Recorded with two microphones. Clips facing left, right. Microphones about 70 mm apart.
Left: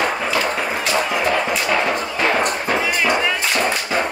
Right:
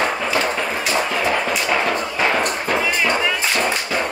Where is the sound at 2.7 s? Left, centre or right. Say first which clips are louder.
Even; centre.